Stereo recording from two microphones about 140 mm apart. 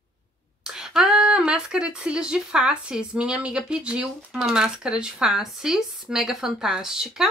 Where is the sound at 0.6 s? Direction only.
5° right (ahead or behind).